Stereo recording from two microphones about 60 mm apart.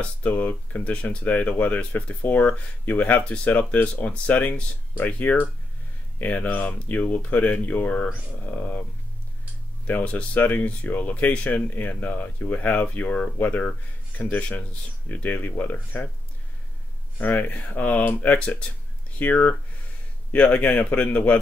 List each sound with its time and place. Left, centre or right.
0.0 s speech: left
9.8 s speech: left
17.2 s speech: left